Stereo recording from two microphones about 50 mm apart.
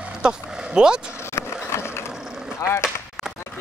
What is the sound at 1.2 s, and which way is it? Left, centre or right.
Skateboard, left.